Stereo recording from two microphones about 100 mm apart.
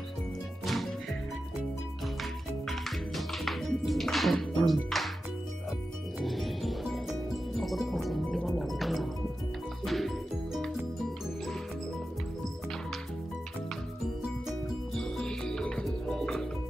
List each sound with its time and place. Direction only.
2.6 s music: centre (ahead or behind)
6.1 s music: centre (ahead or behind)
15.0 s music: 5° left (ahead or behind)